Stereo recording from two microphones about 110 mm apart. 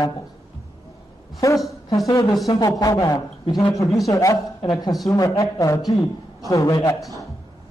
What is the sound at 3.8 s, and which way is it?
Speech, centre (ahead or behind).